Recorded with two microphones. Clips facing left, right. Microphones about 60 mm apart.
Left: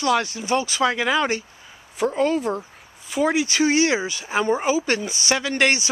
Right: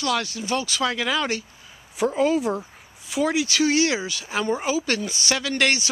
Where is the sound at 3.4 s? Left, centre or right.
Left.